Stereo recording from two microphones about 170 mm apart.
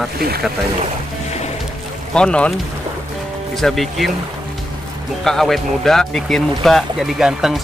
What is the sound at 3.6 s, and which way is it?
Speech, centre (ahead or behind).